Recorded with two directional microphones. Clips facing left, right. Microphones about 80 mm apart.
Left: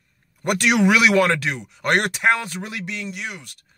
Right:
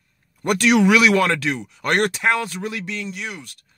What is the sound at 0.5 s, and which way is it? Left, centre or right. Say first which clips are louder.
Speech: right 2 dB; left.